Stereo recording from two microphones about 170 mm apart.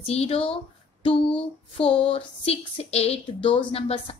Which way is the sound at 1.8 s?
35° left (ahead or behind).